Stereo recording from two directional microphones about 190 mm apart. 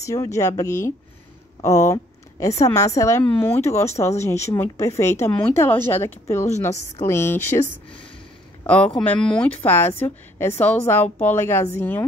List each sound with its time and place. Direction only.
0.0 s a woman's voice: 15° left (ahead or behind)
8.6 s speech: 5° left (ahead or behind)